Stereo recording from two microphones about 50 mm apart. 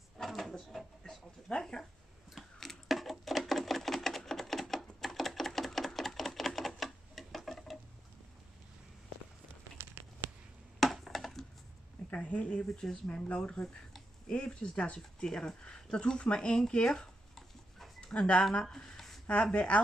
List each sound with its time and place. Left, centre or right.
0.2 s speech: centre
2.3 s a sound: centre
9.8 s a sound: right
10.8 s computer keyboard: centre
12.1 s speech: left; by 17.8 s centre
18.0 s speech: centre
19.5 s speech: left